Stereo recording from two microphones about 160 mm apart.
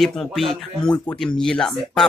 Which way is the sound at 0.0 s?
Centre (ahead or behind).